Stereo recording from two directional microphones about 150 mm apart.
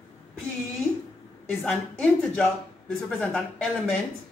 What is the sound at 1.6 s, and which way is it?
A woman's voice, 5° left (ahead or behind).